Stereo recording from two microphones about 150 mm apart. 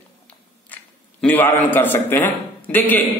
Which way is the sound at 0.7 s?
10° left (ahead or behind).